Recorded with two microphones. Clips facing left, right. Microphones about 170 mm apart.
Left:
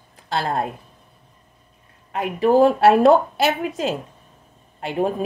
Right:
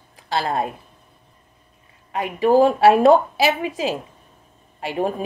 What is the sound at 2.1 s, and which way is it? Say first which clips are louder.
A woman's voice: even; centre (ahead or behind).